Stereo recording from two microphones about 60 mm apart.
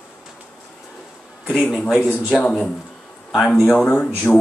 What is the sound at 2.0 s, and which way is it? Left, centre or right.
Speech, left.